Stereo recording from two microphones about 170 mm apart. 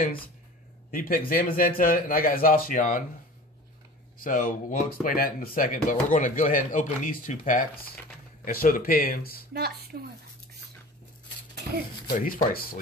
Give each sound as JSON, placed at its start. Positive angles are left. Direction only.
{"t": 0.9, "sound": "speech", "side_deg": 55}
{"t": 4.2, "sound": "speech", "side_deg": 50}
{"t": 9.5, "sound": "speech", "side_deg": -65}
{"t": 12.1, "sound": "speech", "side_deg": 55}